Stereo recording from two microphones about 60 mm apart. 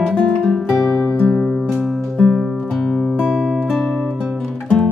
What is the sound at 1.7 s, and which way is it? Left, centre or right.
Music, centre.